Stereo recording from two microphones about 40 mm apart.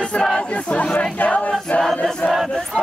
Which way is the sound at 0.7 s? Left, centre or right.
Left.